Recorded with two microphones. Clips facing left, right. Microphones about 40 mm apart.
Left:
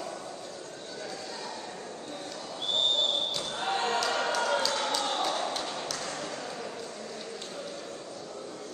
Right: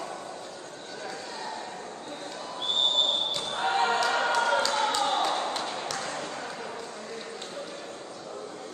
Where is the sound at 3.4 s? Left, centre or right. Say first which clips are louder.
Right 4 dB; right.